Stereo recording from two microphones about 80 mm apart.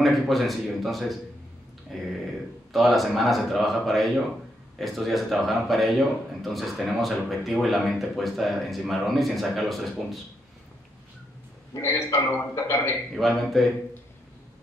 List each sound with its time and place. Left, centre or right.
0.0 s speech: centre
11.8 s a man's voice: left
13.1 s speech: centre